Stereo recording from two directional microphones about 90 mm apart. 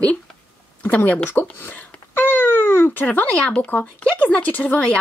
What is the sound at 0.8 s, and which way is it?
Speech, 15° left (ahead or behind).